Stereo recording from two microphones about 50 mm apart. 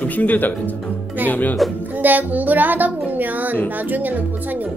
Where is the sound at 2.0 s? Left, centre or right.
Right.